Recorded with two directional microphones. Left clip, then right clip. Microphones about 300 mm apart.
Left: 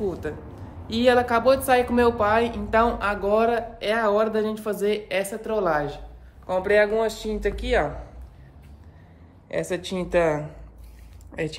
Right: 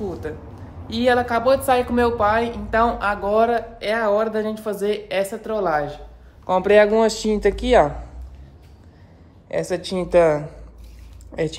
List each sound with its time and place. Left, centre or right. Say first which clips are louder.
0.2 s a woman's voice: right 1 dB; centre
6.4 s speech: right 5 dB; centre
9.5 s a woman's voice: right 4 dB; centre